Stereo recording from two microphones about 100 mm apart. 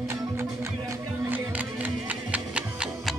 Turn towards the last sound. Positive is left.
turn(degrees=-10)  # may be behind; listen again after turning